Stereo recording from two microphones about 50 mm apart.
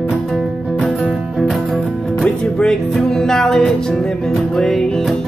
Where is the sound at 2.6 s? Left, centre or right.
Centre.